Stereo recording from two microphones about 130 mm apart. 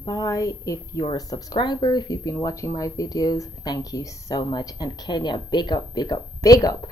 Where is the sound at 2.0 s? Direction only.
25° left (ahead or behind).